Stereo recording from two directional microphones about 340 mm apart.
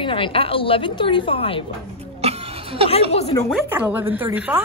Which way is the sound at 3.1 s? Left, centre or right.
Centre.